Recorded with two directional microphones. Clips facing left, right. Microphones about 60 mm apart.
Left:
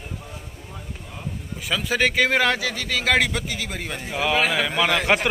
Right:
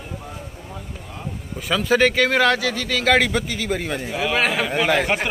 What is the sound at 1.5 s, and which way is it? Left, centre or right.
Speech, centre.